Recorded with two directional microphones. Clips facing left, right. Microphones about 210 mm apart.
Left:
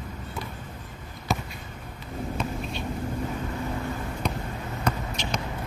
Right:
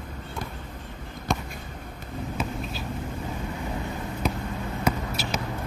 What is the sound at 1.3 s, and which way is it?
Basketball bounce, 5° left (ahead or behind).